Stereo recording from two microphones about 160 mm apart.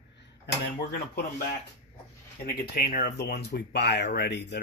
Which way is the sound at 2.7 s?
70° left (ahead or behind).